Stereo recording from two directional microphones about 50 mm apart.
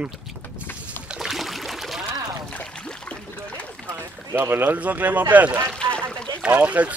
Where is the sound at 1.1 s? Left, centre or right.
Centre.